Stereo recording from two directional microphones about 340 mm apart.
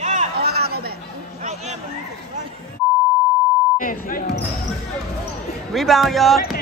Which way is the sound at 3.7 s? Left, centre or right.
Left.